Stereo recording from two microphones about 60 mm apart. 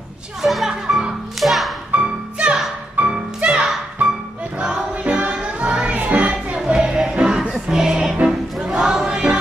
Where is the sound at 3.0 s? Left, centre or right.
Right.